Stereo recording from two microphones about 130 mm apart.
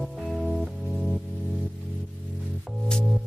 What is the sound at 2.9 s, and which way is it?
Music, 5° left (ahead or behind).